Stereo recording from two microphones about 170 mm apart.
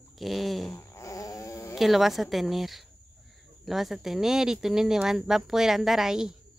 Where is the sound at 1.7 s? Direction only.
Centre (ahead or behind).